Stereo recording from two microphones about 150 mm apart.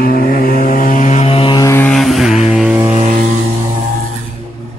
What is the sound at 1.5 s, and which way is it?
Vehicle, 20° left (ahead or behind).